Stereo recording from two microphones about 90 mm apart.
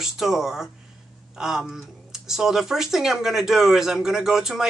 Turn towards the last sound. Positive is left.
turn(degrees=-5)  # may be behind; listen again after turning